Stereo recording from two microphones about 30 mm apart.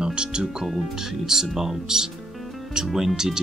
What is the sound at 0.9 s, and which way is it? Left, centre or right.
Speech, centre.